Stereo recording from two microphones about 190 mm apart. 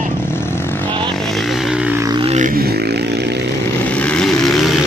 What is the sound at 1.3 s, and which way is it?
Vehicle, centre (ahead or behind).